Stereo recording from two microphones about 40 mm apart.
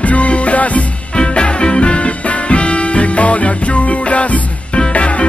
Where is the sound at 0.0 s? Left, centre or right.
Left.